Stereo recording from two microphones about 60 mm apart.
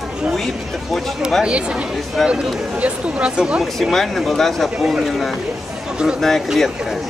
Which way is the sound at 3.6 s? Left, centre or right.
Centre.